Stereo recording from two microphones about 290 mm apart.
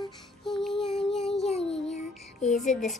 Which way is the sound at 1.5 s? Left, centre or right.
Left.